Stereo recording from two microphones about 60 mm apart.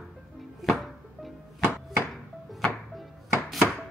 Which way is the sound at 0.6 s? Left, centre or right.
Centre.